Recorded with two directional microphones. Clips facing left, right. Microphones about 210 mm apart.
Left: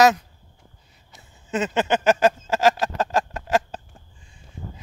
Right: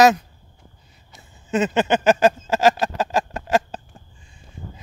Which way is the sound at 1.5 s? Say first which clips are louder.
Right 3 dB; 20° right (ahead or behind).